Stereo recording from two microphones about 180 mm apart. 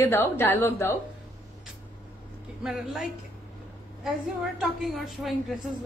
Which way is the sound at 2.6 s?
5° right (ahead or behind).